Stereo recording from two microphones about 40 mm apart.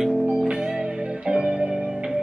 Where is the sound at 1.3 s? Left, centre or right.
Right.